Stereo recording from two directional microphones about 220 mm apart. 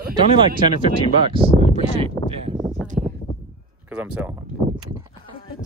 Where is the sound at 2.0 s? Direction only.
25° right (ahead or behind).